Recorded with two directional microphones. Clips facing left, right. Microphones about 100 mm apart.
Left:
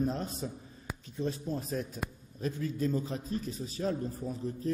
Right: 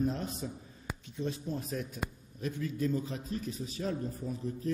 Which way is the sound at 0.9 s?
Centre (ahead or behind).